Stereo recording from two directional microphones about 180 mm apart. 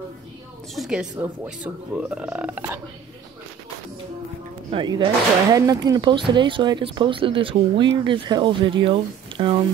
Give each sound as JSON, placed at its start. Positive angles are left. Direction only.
{"t": 0.7, "sound": "speech", "side_deg": -5}
{"t": 4.6, "sound": "speech", "side_deg": -25}